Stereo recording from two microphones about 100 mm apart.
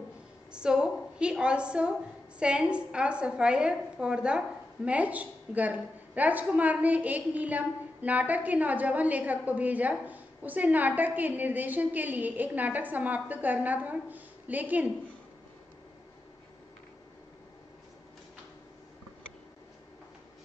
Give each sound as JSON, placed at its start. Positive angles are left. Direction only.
{"t": 0.5, "sound": "a woman's voice", "side_deg": -10}